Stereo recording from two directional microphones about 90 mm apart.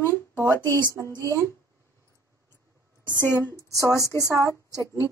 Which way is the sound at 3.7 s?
40° right (ahead or behind).